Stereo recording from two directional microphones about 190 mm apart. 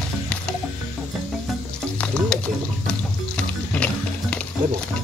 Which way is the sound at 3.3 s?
5° left (ahead or behind).